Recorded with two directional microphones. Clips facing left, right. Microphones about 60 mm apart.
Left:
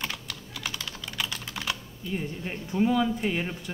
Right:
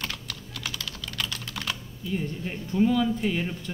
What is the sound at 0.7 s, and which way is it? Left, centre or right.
Typing, left.